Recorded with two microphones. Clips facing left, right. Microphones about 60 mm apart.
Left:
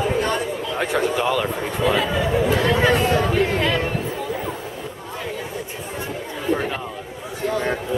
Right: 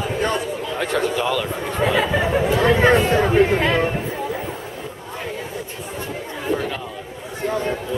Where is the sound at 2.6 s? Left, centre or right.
Right.